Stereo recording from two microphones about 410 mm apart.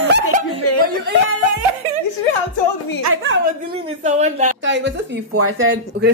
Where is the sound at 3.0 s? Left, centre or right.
Right.